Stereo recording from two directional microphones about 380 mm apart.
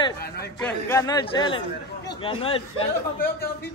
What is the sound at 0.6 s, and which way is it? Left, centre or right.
Speech, centre.